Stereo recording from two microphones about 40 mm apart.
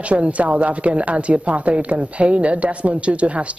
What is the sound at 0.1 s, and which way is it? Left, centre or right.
A woman's voice, right.